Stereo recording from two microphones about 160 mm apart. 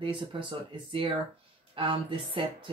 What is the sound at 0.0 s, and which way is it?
Speech, 30° right (ahead or behind).